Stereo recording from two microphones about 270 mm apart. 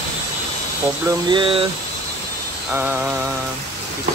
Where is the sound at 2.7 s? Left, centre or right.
Centre.